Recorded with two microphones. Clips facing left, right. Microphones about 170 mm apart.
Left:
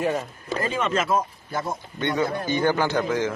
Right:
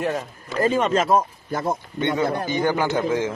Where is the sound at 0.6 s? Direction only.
40° right (ahead or behind).